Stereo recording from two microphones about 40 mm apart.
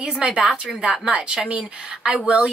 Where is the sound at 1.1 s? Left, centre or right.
Right.